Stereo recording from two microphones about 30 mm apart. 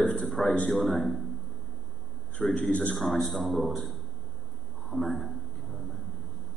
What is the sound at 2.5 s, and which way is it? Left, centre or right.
Speech, left.